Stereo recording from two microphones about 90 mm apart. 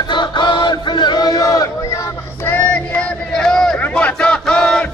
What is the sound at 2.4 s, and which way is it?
Child singing, 20° left (ahead or behind).